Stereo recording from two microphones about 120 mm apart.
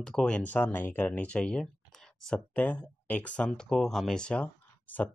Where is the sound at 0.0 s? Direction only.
5° left (ahead or behind).